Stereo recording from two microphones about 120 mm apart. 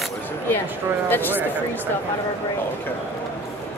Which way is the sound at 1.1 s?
15° left (ahead or behind).